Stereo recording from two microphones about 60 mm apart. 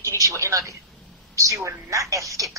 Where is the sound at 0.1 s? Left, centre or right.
Right.